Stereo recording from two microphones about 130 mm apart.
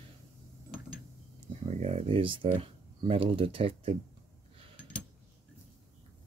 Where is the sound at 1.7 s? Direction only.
60° right (ahead or behind).